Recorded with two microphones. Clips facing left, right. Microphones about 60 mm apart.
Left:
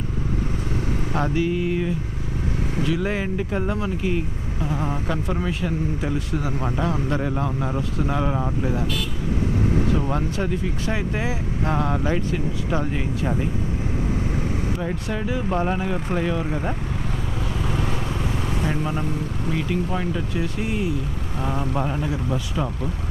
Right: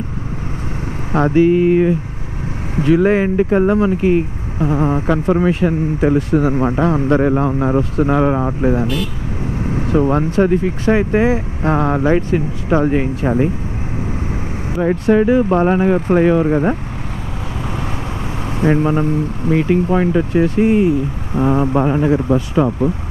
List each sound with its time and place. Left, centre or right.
1.1 s speech: right
14.8 s speech: right
18.6 s speech: right